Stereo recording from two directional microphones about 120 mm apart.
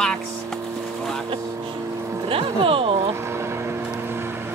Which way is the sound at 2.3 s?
50° right (ahead or behind).